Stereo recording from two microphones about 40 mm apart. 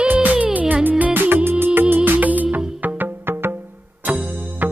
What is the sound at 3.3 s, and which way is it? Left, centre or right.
Music, right.